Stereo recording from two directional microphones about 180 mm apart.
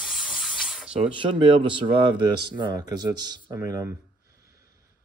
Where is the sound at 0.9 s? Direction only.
30° right (ahead or behind).